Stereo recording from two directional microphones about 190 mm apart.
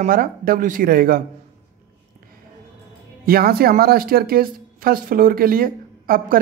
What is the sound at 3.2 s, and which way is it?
Speech, 50° right (ahead or behind).